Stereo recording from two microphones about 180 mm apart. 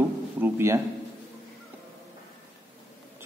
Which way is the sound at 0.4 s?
15° right (ahead or behind).